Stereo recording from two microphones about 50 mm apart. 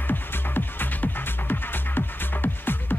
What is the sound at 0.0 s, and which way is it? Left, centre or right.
Music, left.